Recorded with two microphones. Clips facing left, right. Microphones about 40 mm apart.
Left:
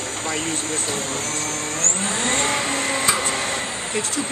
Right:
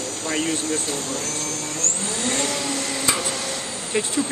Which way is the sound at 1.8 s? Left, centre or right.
Left.